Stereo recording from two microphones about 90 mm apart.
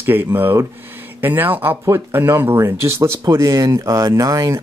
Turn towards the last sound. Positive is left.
turn(degrees=-40)  # may be behind; listen again after turning